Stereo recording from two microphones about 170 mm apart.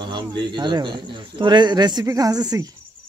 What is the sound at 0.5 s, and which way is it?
Speech, 25° right (ahead or behind).